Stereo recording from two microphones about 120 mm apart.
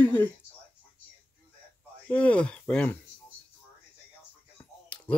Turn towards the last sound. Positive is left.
turn(degrees=10)  # may be behind; listen again after turning